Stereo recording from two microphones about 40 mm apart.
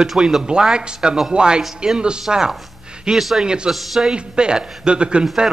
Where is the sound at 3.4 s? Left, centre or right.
Right.